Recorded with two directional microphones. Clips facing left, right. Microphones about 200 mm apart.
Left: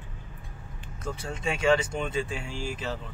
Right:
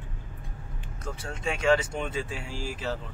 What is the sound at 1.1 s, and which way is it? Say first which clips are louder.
Speech: left 1 dB; centre (ahead or behind).